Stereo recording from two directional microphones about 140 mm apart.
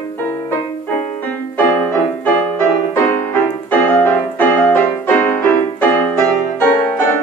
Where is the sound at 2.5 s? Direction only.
15° left (ahead or behind).